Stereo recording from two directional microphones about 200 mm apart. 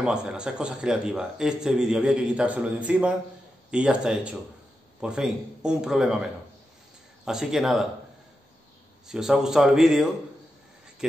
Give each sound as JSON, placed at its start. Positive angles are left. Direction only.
{"t": 0.0, "sound": "a man's voice", "side_deg": -5}
{"t": 9.0, "sound": "a man's voice", "side_deg": 0}